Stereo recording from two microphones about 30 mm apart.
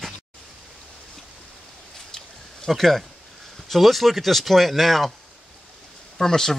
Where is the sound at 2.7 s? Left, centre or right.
Centre.